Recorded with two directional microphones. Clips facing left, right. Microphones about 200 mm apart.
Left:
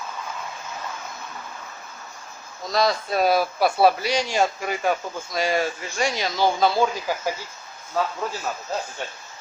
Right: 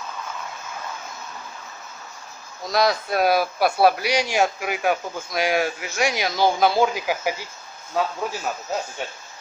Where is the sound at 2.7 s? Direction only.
10° right (ahead or behind).